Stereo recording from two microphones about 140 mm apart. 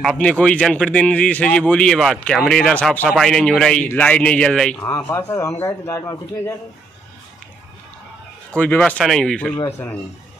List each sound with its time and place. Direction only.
0.0 s a man's voice: 5° left (ahead or behind)
4.7 s a man's voice: 20° left (ahead or behind)
8.5 s a man's voice: 10° left (ahead or behind)
9.6 s a man's voice: 15° left (ahead or behind)